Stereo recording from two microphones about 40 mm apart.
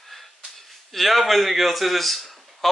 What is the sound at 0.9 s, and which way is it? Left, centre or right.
A man's voice, centre.